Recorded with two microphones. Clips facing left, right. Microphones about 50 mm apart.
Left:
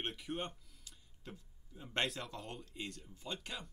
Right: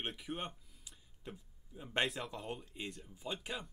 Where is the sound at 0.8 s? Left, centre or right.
Centre.